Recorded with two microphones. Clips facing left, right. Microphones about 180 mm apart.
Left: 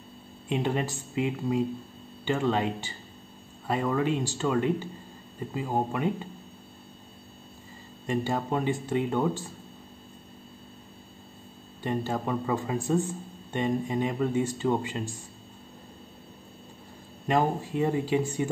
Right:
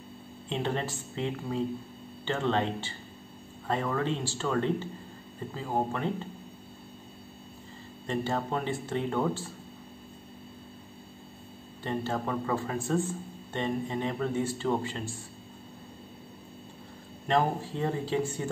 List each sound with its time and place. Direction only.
0.5 s speech: 10° left (ahead or behind)
8.1 s speech: 10° left (ahead or behind)
11.8 s speech: 15° left (ahead or behind)
17.3 s speech: 10° left (ahead or behind)